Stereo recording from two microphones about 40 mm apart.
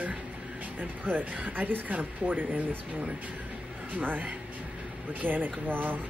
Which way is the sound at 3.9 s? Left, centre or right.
Right.